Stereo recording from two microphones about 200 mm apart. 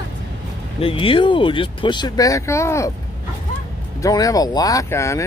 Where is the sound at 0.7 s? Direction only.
25° left (ahead or behind).